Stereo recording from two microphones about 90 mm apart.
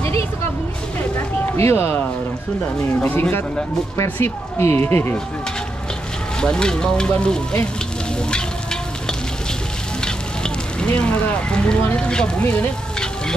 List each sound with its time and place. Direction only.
1.6 s speech: 30° left (ahead or behind)
6.4 s sizzle: 10° left (ahead or behind)
10.0 s fire: 10° left (ahead or behind)
11.8 s sizzle: 15° left (ahead or behind)